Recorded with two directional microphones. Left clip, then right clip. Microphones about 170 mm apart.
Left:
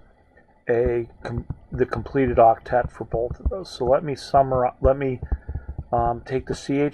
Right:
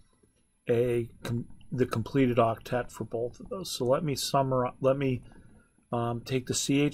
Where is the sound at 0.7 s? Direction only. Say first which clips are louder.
Left 6 dB; 35° right (ahead or behind).